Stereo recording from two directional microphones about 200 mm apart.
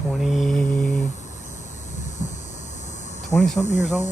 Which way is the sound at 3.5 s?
35° left (ahead or behind).